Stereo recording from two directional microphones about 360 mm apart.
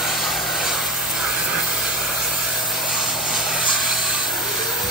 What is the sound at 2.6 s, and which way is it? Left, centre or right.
Vehicle, centre.